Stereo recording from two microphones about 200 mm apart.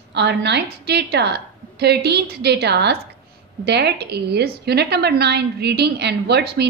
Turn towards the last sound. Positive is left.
turn(degrees=-55)  # may be behind; listen again after turning